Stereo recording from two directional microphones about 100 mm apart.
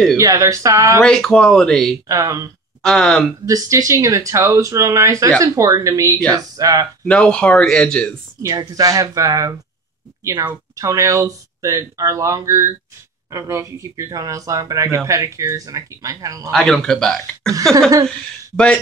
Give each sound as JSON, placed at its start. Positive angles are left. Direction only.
{"t": 0.2, "sound": "speech", "side_deg": -35}
{"t": 1.0, "sound": "speech", "side_deg": 5}
{"t": 2.0, "sound": "speech", "side_deg": -35}
{"t": 2.8, "sound": "speech", "side_deg": 5}
{"t": 3.4, "sound": "speech", "side_deg": -35}
{"t": 7.1, "sound": "speech", "side_deg": 10}
{"t": 8.4, "sound": "speech", "side_deg": -35}
{"t": 16.5, "sound": "speech", "side_deg": 5}